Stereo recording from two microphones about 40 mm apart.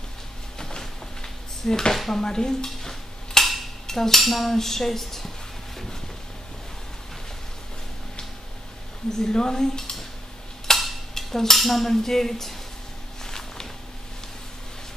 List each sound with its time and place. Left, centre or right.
0.6 s drawer open or close: centre
2.0 s speech: centre
2.2 s dishes: centre
3.8 s cutlery: centre
5.8 s a sound: centre
9.2 s cutlery: centre
10.7 s a sound: centre
11.1 s cutlery: centre
13.2 s a sound: centre